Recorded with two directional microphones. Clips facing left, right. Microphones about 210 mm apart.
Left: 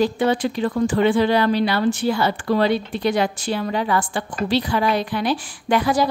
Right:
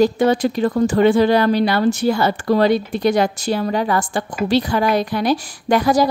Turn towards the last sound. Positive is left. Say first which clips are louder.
# right 3 dB
turn(degrees=-40)  # may be behind; listen again after turning